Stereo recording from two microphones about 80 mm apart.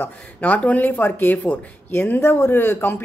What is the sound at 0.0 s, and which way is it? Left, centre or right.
A woman's voice, centre.